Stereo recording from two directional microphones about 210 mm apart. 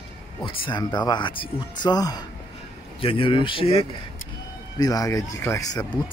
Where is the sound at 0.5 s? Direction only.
25° left (ahead or behind).